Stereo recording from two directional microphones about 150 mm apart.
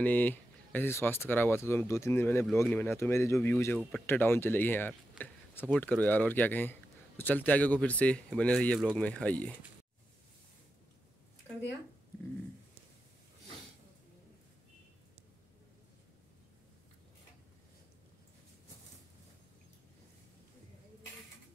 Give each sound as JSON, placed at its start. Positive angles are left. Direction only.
{"t": 0.0, "sound": "speech", "side_deg": 10}